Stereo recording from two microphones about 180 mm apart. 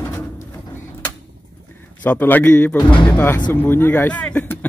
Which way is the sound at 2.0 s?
10° left (ahead or behind).